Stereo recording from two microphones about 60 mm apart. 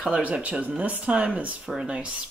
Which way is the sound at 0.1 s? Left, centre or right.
Right.